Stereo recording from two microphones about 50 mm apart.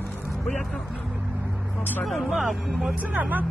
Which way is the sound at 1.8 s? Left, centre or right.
Left.